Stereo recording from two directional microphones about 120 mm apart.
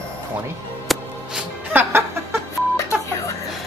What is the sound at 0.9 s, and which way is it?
Music, centre (ahead or behind).